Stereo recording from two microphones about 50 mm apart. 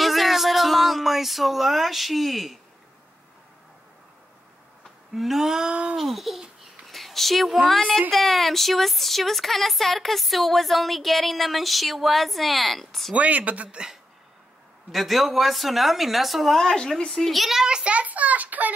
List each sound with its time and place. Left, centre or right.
0.0 s a sound: centre
5.1 s a sound: centre; by 5.9 s right
5.9 s babbling: centre
6.9 s speech: centre
13.1 s speech: right
14.9 s speech: centre
17.6 s a child's voice: right